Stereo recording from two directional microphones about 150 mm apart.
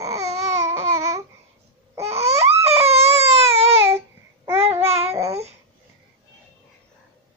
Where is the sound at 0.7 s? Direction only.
20° right (ahead or behind).